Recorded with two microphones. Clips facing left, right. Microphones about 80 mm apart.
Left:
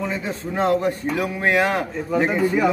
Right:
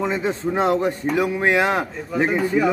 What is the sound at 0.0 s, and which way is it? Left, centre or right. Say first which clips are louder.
A man's voice: right 4 dB; right.